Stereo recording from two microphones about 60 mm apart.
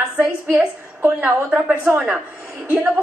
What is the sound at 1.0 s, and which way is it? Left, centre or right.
A woman's voice, right.